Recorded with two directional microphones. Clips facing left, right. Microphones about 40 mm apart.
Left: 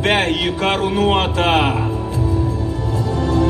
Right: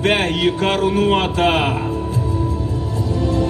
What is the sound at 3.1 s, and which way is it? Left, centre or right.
Music, centre.